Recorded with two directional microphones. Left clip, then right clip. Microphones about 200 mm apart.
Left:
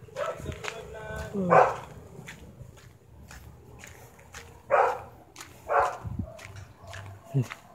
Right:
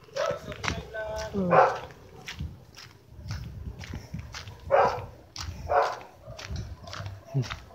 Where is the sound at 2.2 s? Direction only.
55° right (ahead or behind).